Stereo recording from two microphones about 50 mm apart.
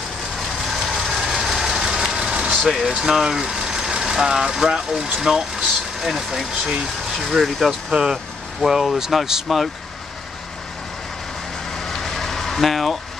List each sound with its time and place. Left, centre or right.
0.7 s vehicle: centre
2.6 s speech: centre
6.5 s speech: centre
7.2 s speech: centre
11.7 s a sound: centre